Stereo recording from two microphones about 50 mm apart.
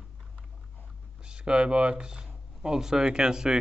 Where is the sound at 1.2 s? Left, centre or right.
Centre.